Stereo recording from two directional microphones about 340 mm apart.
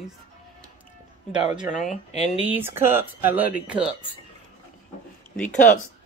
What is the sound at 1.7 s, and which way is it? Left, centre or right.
Speech, left.